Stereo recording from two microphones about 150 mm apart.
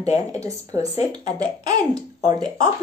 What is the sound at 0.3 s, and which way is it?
A woman's voice, 20° right (ahead or behind).